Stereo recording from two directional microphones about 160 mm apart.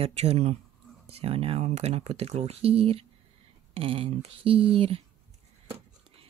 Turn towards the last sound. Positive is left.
turn(degrees=-35)  # may be behind; listen again after turning